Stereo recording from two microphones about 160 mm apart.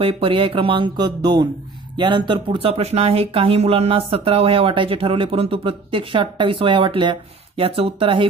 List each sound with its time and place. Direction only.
0.0 s speech: 35° right (ahead or behind)